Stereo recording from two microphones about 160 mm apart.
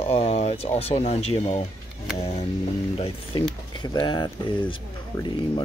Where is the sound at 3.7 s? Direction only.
30° left (ahead or behind).